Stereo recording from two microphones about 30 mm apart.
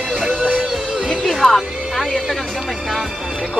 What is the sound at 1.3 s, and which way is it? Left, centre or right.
Speech, centre.